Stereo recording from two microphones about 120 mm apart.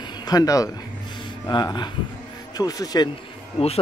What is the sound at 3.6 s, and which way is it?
Speech, 55° left (ahead or behind).